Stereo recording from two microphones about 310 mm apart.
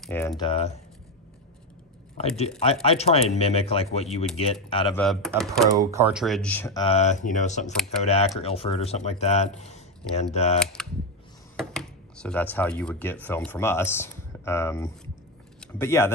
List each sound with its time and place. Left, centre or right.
0.0 s speech: centre
2.1 s speech: centre
4.9 s speech: centre
5.7 s speech: centre; by 10.6 s left
10.6 s speech: centre